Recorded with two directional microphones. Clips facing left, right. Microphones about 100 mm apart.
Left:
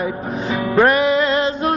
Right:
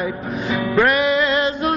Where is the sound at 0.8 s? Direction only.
35° left (ahead or behind).